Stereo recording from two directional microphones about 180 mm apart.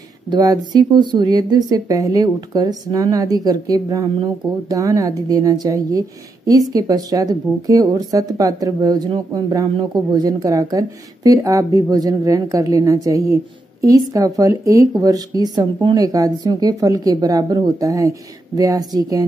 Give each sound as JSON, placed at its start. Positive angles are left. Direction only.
{"t": 0.3, "sound": "speech", "side_deg": -20}